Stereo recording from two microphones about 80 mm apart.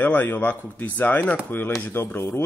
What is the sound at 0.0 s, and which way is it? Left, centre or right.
Speech, left.